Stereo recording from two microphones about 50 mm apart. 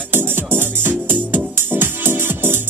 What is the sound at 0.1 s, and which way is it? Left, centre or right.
Music, right.